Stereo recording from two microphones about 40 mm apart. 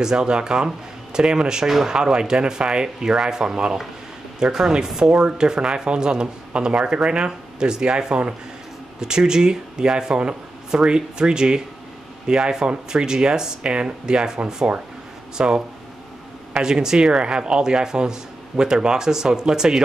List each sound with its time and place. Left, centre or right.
0.0 s speech: centre
1.7 s speech: centre
2.0 s speech: centre